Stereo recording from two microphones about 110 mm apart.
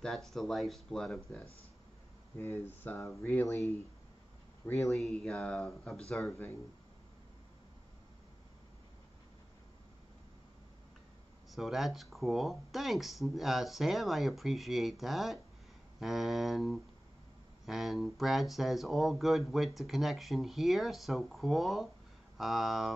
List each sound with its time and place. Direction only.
0.0 s speech: centre (ahead or behind)
2.3 s speech: 20° left (ahead or behind)
3.4 s speech: 25° left (ahead or behind)
4.9 s speech: centre (ahead or behind)
11.5 s speech: centre (ahead or behind)